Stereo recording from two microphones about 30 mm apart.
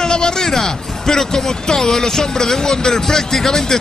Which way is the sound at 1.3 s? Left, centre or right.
Left.